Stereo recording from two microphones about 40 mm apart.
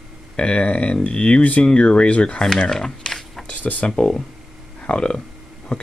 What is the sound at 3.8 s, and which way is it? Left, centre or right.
Speech, centre.